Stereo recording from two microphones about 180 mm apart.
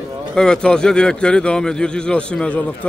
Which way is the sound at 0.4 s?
5° left (ahead or behind).